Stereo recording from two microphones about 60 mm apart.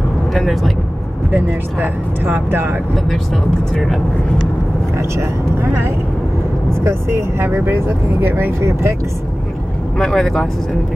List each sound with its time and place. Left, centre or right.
0.3 s speech: centre
1.3 s speech: right
6.7 s speech: right
9.9 s speech: centre